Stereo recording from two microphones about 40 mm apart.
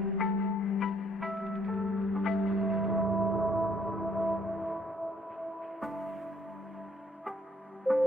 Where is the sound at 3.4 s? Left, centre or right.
Centre.